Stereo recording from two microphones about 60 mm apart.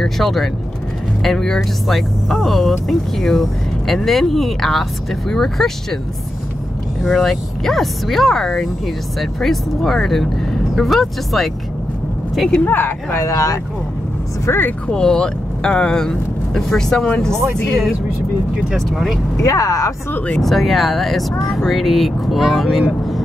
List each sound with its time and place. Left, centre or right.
0.0 s speech: centre
7.0 s speech: centre
12.6 s speech: left
13.1 s speech: left
14.4 s speech: left
14.9 s speech: centre
18.8 s speech: centre
19.4 s speech: left
20.3 s speech: centre